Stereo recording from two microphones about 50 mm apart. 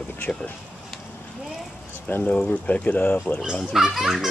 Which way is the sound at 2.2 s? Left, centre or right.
Left.